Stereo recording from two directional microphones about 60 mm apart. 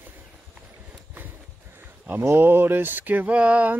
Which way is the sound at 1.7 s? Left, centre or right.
Right.